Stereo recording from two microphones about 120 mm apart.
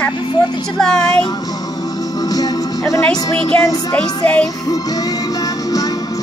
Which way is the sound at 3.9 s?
10° left (ahead or behind).